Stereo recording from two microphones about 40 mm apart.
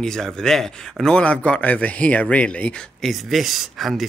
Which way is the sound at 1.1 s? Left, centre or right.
Left.